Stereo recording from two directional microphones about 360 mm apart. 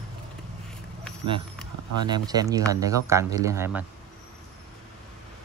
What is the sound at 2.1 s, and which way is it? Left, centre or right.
Speech, centre.